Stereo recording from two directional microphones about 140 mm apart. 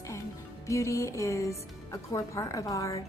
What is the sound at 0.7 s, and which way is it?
A woman's voice, 20° left (ahead or behind).